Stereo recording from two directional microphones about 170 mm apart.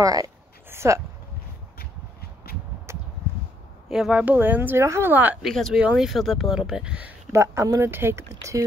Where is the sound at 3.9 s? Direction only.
5° right (ahead or behind).